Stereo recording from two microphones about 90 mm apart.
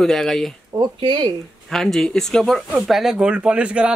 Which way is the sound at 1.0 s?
55° right (ahead or behind).